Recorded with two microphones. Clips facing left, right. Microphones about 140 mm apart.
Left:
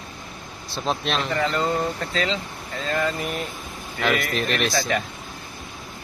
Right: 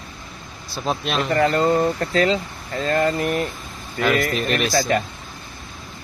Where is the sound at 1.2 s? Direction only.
45° right (ahead or behind).